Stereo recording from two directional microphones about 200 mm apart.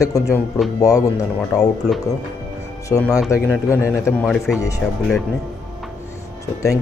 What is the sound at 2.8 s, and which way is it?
Speech, 15° left (ahead or behind).